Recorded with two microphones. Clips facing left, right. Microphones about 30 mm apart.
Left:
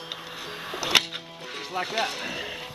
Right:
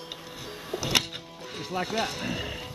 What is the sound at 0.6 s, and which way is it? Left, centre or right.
Music, left.